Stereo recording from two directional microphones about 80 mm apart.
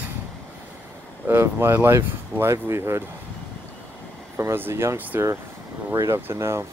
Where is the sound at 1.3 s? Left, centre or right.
Right.